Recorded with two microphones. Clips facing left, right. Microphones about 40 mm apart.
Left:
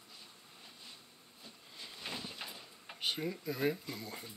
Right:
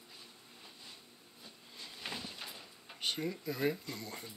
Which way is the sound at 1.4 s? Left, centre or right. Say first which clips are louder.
Even; centre.